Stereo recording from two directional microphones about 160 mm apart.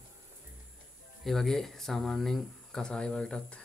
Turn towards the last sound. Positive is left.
turn(degrees=5)  # may be behind; listen again after turning